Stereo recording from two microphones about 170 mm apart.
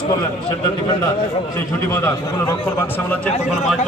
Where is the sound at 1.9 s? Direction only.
15° left (ahead or behind).